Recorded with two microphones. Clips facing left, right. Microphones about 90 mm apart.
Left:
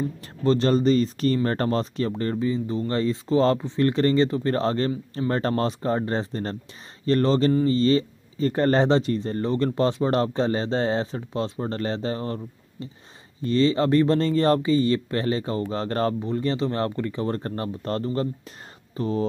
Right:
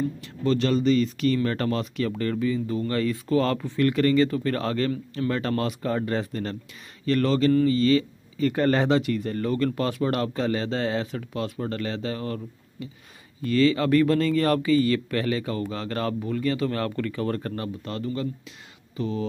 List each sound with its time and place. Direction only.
0.4 s speech: 35° left (ahead or behind)